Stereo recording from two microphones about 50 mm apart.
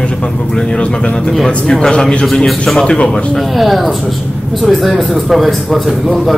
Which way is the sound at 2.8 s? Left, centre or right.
Centre.